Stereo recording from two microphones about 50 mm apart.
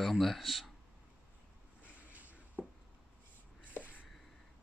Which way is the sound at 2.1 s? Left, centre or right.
Right.